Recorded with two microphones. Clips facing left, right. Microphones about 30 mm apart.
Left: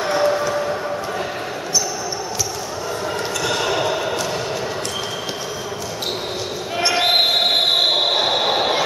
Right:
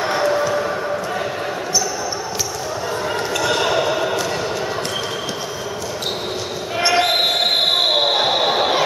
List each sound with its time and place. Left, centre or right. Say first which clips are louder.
0.2 s music: right 1 dB; centre
3.4 s a sound: right 2 dB; centre
6.8 s basketball bounce: even; centre